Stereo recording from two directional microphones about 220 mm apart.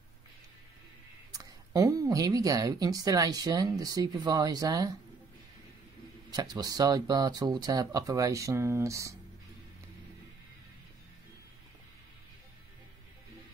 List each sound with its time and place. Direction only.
1.3 s a woman's voice: 15° right (ahead or behind)
6.3 s a woman's voice: 15° right (ahead or behind)